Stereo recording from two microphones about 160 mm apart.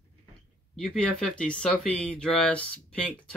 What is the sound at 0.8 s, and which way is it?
Speech, 5° left (ahead or behind).